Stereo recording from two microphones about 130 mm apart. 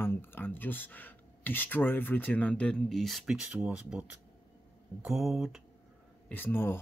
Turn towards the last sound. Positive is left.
turn(degrees=15)  # may be behind; listen again after turning